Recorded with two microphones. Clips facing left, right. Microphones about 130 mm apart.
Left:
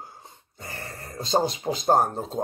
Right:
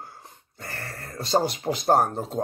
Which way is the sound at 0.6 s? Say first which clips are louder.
Right 1 dB; 20° left (ahead or behind).